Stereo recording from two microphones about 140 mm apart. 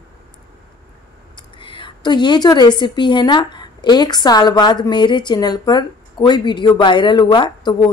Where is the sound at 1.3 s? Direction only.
35° left (ahead or behind).